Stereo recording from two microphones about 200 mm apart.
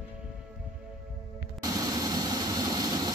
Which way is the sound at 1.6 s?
20° right (ahead or behind).